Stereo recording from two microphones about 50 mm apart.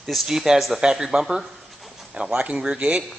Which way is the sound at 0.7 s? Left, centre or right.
Centre.